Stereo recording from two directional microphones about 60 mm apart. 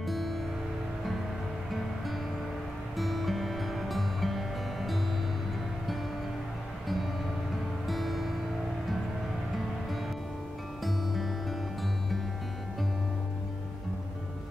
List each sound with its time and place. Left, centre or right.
0.0 s music: centre
3.0 s music: centre
7.8 s music: centre
10.8 s music: centre